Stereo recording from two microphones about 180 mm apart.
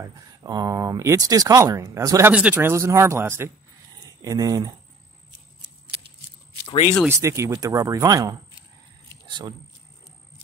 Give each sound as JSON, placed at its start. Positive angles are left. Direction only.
{"t": 0.0, "sound": "speech", "side_deg": -20}
{"t": 7.1, "sound": "speech", "side_deg": -15}